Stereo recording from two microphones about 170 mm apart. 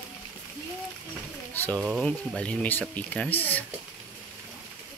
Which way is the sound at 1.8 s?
Centre (ahead or behind).